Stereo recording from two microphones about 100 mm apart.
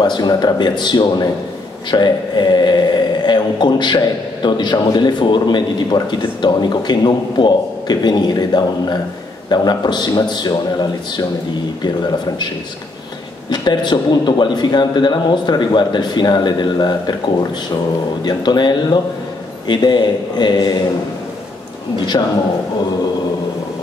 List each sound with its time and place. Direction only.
0.0 s speech: 45° left (ahead or behind)
13.5 s speech: 45° left (ahead or behind)
22.2 s speech: 50° left (ahead or behind)